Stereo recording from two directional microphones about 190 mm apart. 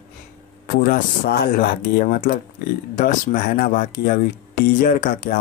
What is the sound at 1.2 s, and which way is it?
Speech, 55° left (ahead or behind).